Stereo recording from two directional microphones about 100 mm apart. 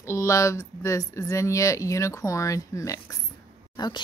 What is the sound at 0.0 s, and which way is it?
Speech, 25° left (ahead or behind).